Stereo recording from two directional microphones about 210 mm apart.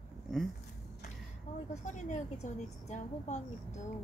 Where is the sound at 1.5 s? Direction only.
35° left (ahead or behind).